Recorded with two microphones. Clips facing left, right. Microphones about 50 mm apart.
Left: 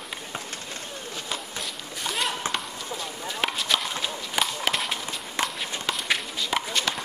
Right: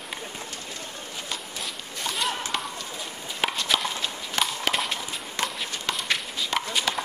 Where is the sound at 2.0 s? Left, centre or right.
Centre.